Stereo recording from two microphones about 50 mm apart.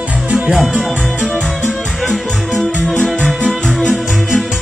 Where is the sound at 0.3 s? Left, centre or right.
Right.